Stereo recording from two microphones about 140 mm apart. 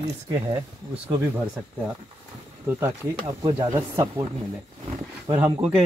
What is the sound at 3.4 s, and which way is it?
Speech, 35° right (ahead or behind).